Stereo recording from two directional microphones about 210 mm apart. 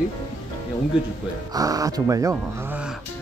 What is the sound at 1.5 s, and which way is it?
Speech, 15° right (ahead or behind).